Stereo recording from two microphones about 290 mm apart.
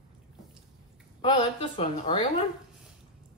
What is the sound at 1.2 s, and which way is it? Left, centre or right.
A woman's voice, centre.